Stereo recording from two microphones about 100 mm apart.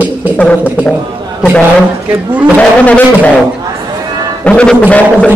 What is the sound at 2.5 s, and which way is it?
Speech, 15° left (ahead or behind).